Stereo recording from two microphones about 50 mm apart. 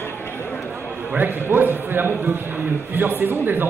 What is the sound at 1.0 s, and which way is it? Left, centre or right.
A man's voice, right.